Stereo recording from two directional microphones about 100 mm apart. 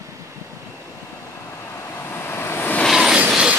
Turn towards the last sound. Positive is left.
turn(degrees=-10)  # may be behind; listen again after turning